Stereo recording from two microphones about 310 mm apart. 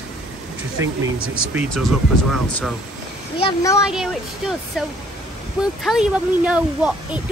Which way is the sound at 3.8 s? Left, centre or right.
Centre.